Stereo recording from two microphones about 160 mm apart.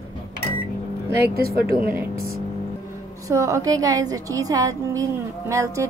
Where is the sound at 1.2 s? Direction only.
70° right (ahead or behind).